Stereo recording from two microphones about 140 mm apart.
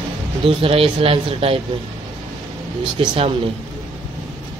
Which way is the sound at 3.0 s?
40° right (ahead or behind).